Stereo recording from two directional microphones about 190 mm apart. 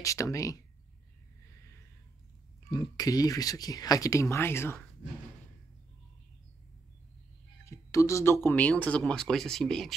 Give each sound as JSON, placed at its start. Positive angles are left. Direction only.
{"t": 0.0, "sound": "speech", "side_deg": 15}
{"t": 1.4, "sound": "a sound", "side_deg": 15}
{"t": 2.7, "sound": "speech", "side_deg": 20}
{"t": 7.6, "sound": "speech", "side_deg": 15}